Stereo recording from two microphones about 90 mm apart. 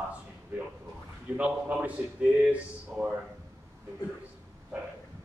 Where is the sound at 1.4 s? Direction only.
15° right (ahead or behind).